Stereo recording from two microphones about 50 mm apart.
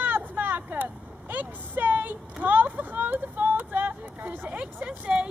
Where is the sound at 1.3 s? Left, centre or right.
Right.